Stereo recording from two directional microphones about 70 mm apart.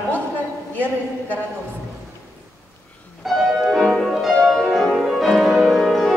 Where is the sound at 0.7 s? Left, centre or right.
Left.